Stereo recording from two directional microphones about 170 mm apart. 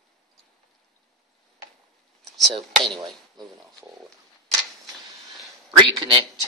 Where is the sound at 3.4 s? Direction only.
25° right (ahead or behind).